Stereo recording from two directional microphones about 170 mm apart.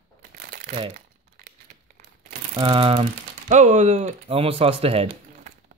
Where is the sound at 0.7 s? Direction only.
30° right (ahead or behind).